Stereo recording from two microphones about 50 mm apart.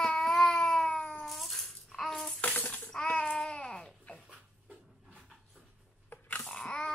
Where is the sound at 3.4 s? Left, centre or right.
Centre.